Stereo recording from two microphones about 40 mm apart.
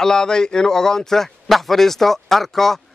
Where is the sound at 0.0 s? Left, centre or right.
Centre.